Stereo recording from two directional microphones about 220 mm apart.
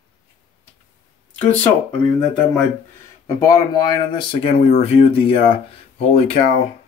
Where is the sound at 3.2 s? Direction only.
15° left (ahead or behind).